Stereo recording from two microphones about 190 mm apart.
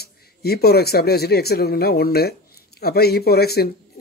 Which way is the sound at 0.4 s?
55° left (ahead or behind).